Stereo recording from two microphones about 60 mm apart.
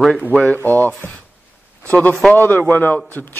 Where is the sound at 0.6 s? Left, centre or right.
Right.